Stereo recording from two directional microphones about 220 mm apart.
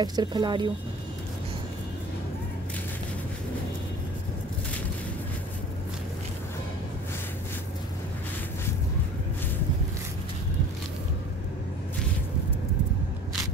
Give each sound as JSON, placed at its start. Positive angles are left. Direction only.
{"t": 0.0, "sound": "speech", "side_deg": -20}